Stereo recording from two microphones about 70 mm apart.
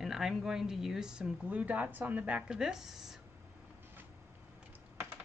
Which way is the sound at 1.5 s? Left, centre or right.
Right.